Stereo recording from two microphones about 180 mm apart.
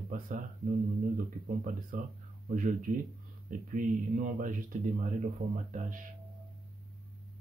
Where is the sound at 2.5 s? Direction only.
45° right (ahead or behind).